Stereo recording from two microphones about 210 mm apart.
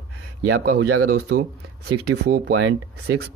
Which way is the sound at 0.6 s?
90° right.